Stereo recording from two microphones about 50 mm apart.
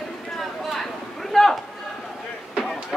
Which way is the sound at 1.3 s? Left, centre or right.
Centre.